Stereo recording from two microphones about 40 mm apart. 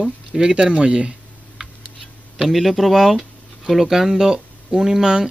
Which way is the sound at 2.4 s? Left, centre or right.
Centre.